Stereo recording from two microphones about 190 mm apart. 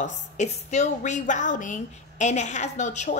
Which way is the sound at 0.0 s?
35° left (ahead or behind).